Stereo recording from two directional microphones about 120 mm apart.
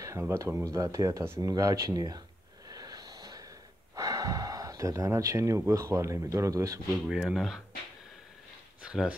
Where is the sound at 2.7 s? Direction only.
30° right (ahead or behind).